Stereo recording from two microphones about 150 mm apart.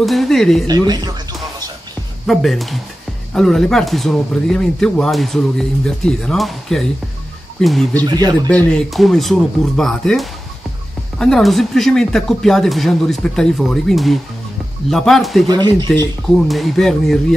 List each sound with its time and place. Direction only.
0.0 s a woman's voice: centre (ahead or behind)
0.7 s speech: 25° right (ahead or behind)
2.2 s speech: centre (ahead or behind)
8.0 s speech: 25° right (ahead or behind)
8.5 s speech: 5° left (ahead or behind)
15.4 s speech: 30° right (ahead or behind)
16.4 s speech: centre (ahead or behind)